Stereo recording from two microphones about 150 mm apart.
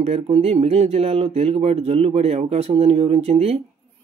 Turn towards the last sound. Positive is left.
turn(degrees=-45)  # may be behind; listen again after turning